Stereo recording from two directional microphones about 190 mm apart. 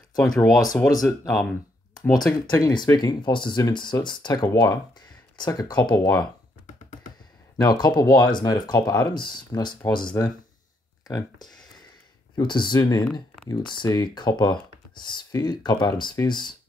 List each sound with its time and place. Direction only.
0.1 s speech: 20° left (ahead or behind)
0.4 s speech: centre (ahead or behind)
2.4 s speech: 25° left (ahead or behind)
7.5 s speech: 20° left (ahead or behind)
13.0 s a sound: 5° left (ahead or behind)
13.5 s speech: 25° left (ahead or behind)